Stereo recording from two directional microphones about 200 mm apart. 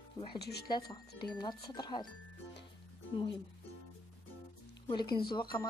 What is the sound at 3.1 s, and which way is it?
Speech, 25° left (ahead or behind).